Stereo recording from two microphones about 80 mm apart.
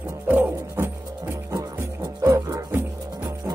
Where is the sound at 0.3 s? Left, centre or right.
Right.